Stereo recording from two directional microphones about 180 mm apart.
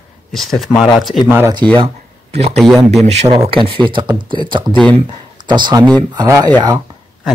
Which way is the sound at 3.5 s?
30° right (ahead or behind).